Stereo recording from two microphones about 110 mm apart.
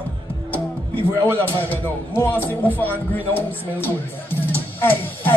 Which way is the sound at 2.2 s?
15° left (ahead or behind).